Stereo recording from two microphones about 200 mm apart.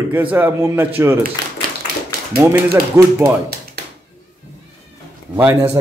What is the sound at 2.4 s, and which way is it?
Speech, 15° right (ahead or behind).